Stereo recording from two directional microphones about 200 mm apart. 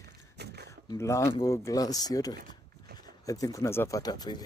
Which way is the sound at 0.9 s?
15° left (ahead or behind).